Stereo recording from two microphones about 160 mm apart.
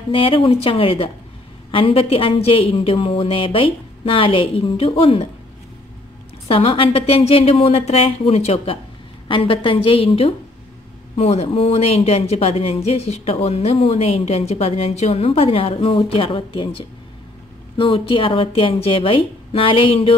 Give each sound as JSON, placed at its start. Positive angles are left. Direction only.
{"t": 0.1, "sound": "speech", "side_deg": 35}
{"t": 6.4, "sound": "speech", "side_deg": 35}